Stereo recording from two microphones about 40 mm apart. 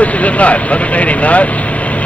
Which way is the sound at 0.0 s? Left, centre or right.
Left.